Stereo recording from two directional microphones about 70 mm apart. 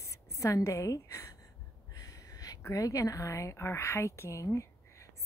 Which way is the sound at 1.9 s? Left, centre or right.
Left.